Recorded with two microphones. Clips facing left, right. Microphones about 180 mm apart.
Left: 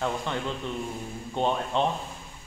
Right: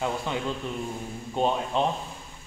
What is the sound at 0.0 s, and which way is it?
A man's voice, 10° right (ahead or behind).